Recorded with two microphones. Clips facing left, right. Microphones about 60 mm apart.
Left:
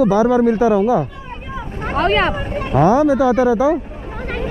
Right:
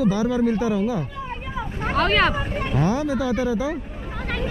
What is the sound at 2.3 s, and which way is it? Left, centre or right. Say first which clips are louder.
Speech: left 4 dB; centre.